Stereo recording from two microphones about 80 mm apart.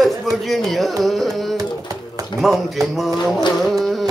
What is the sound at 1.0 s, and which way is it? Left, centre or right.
Carnatic music, centre.